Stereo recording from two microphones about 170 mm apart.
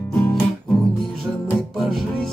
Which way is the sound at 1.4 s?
Centre (ahead or behind).